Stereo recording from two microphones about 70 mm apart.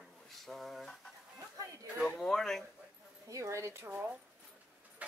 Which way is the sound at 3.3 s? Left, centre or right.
Right.